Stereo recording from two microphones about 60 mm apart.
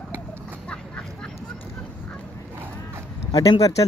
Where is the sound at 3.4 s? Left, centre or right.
Left.